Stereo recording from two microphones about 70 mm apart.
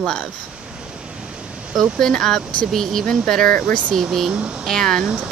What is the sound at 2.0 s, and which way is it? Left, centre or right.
Speech, centre.